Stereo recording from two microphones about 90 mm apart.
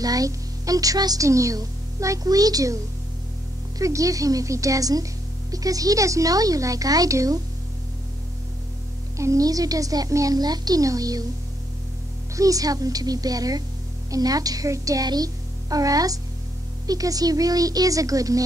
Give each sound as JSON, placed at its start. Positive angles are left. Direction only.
{"t": 0.0, "sound": "speech", "side_deg": -40}
{"t": 9.2, "sound": "a woman's voice", "side_deg": -40}
{"t": 12.4, "sound": "a woman's voice", "side_deg": -40}